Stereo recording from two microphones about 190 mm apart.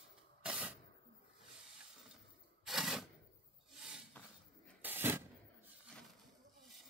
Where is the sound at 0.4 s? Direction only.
5° right (ahead or behind).